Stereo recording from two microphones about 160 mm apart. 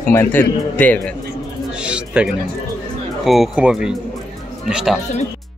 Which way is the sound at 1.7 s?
5° right (ahead or behind).